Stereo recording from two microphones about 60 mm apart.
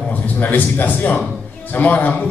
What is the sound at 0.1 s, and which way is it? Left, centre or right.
A man's voice, left.